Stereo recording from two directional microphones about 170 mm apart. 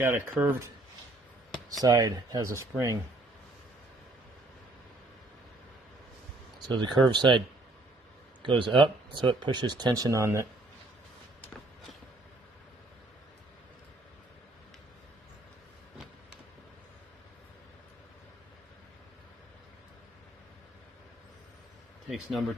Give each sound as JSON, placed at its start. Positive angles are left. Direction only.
{"t": 0.0, "sound": "speech", "side_deg": -15}
{"t": 1.7, "sound": "speech", "side_deg": -20}
{"t": 6.7, "sound": "speech", "side_deg": -25}
{"t": 22.1, "sound": "speech", "side_deg": 0}